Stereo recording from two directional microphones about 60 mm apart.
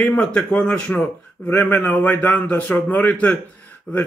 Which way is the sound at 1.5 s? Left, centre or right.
Left.